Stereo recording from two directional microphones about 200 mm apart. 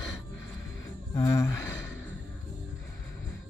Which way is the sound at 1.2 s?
15° left (ahead or behind).